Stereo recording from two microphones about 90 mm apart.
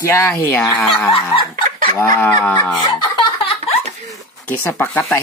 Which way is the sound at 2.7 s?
60° left (ahead or behind).